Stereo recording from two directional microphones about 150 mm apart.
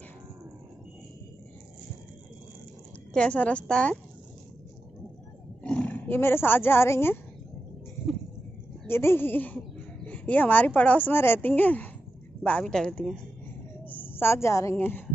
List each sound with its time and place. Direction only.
3.1 s a woman's voice: 5° left (ahead or behind)
5.6 s speech: 5° left (ahead or behind)
8.8 s a woman's voice: 15° left (ahead or behind)
13.8 s a woman's voice: 15° left (ahead or behind)